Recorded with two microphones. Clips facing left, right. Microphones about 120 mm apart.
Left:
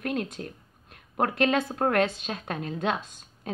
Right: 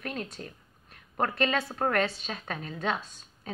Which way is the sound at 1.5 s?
20° left (ahead or behind).